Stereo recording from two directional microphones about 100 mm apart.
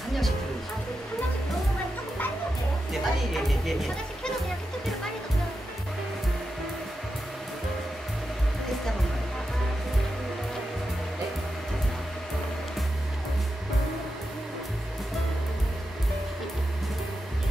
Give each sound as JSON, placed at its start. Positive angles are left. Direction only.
{"t": 2.9, "sound": "music", "side_deg": 0}